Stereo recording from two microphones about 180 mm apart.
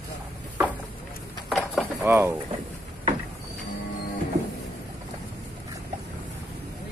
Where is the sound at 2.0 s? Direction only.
10° right (ahead or behind).